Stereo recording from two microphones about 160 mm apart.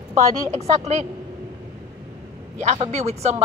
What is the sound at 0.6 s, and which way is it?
Speech, 45° right (ahead or behind).